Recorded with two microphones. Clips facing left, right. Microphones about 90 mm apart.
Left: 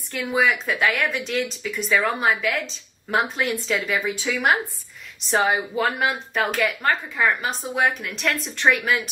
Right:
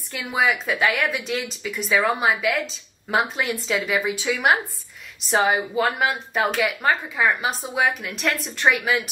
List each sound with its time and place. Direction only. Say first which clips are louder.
0.1 s a woman's voice: left 1 dB; centre (ahead or behind)